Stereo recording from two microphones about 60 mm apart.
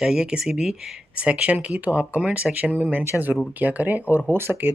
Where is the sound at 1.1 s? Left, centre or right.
Right.